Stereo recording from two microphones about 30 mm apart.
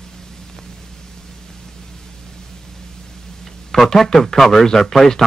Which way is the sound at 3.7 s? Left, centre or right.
Centre.